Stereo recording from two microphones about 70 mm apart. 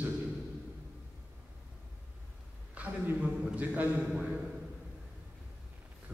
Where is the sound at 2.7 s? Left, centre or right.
Right.